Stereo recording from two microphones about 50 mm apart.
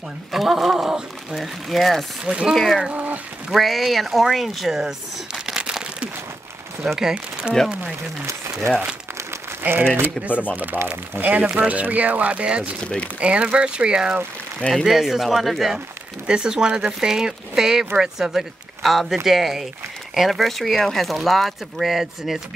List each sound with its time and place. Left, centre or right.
0.3 s speech: centre
2.9 s a sound: right
3.5 s speech: centre
5.6 s a sound: centre
6.8 s speech: centre
8.5 s speech: centre
9.6 s crumpling: right
10.5 s speech: right
12.8 s speech: left
13.2 s speech: right
14.9 s speech: centre
16.3 s speech: centre